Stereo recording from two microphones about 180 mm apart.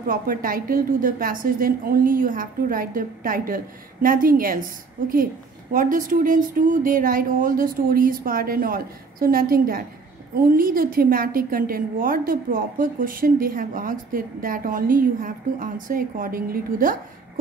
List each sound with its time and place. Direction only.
0.0 s a woman's voice: 50° right (ahead or behind)